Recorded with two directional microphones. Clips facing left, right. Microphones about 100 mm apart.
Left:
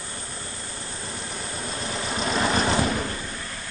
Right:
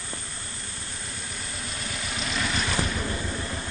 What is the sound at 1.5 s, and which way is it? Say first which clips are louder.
Vehicle: left 6 dB; 35° left (ahead or behind).